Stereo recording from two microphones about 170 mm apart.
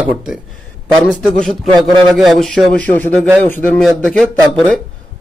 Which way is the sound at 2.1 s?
Centre (ahead or behind).